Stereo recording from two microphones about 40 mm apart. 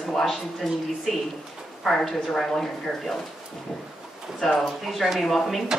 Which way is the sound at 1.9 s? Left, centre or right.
Centre.